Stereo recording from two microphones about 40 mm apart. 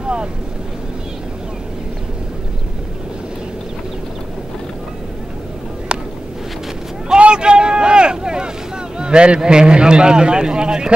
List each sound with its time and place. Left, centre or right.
0.0 s boat: right
7.2 s vehicle: right